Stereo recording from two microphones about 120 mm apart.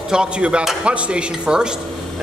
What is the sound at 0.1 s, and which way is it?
Speech, 10° right (ahead or behind).